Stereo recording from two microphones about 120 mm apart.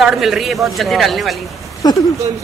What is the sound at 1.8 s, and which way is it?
Speech, 35° left (ahead or behind).